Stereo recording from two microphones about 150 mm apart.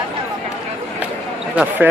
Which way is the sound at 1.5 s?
10° right (ahead or behind).